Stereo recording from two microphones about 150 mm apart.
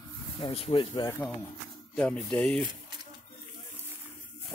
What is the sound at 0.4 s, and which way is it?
Speech, 40° left (ahead or behind).